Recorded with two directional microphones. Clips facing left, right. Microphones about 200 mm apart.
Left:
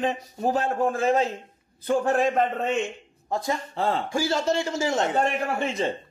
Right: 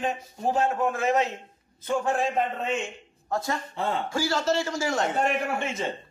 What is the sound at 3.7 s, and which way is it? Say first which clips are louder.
Speech: left 4 dB; 35° left (ahead or behind).